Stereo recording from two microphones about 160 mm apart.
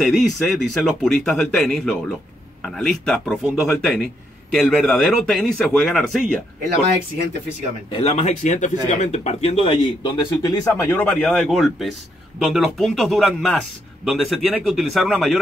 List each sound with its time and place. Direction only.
0.0 s a man's voice: centre (ahead or behind)
7.9 s a man's voice: 40° left (ahead or behind); by 15.3 s centre (ahead or behind)